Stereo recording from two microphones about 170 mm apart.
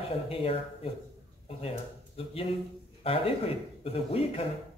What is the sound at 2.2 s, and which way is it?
A man's voice, 35° left (ahead or behind).